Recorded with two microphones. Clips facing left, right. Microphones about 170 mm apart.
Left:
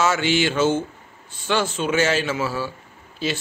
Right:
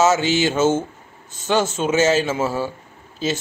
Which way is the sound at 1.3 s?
45° right (ahead or behind).